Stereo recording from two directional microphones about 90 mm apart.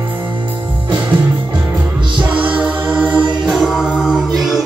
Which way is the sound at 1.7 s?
15° right (ahead or behind).